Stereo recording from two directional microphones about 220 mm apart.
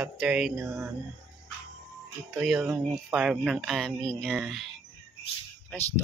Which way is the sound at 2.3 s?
Centre (ahead or behind).